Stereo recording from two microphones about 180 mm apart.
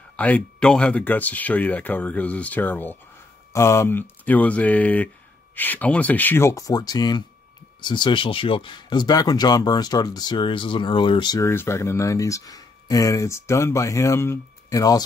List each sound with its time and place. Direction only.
0.1 s speech: 5° left (ahead or behind)